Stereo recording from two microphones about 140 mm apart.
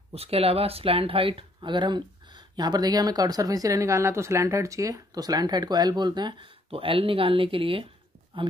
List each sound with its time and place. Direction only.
0.1 s speech: 45° right (ahead or behind)